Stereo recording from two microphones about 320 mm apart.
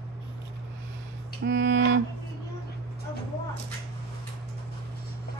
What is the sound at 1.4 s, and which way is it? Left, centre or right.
Music, right.